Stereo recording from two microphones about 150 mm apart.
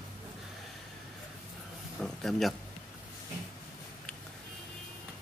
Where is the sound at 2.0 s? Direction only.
Centre (ahead or behind).